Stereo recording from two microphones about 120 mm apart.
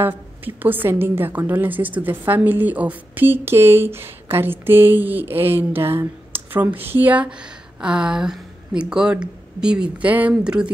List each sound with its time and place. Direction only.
0.0 s a woman's voice: 15° right (ahead or behind)